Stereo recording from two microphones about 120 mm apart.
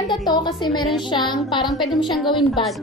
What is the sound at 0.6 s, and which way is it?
Speech, 40° left (ahead or behind).